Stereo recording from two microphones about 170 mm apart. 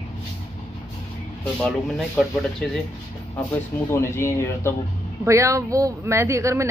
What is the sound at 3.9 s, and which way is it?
Speech, 15° left (ahead or behind).